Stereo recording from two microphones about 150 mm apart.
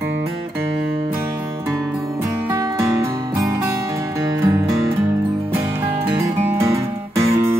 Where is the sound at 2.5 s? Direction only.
20° right (ahead or behind).